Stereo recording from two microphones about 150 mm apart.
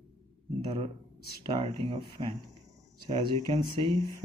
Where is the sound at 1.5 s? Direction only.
40° right (ahead or behind).